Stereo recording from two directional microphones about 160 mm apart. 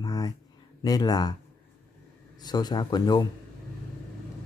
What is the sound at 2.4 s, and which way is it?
Speech, 25° left (ahead or behind).